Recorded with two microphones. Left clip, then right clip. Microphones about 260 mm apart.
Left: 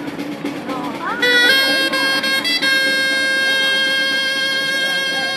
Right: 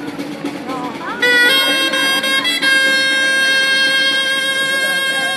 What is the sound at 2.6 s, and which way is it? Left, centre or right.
Vehicle, right.